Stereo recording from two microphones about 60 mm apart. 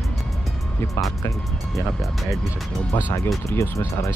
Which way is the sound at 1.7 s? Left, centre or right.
Centre.